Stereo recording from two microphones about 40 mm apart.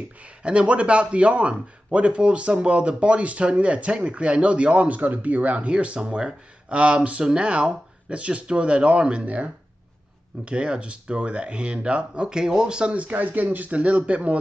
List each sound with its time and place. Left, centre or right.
0.2 s a man's voice: right
10.4 s a man's voice: right
12.9 s speech: right
13.7 s speech: right